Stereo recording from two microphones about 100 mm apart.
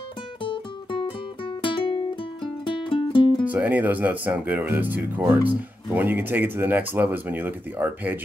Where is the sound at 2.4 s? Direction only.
55° left (ahead or behind).